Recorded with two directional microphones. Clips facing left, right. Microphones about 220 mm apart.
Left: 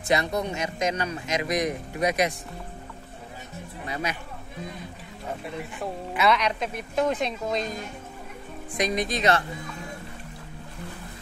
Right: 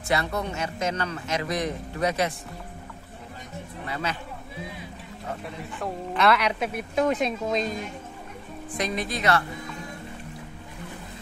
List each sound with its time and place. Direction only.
0.1 s speech: 15° left (ahead or behind)
3.8 s speech: 15° left (ahead or behind)
6.1 s speech: centre (ahead or behind)
8.7 s speech: 15° left (ahead or behind)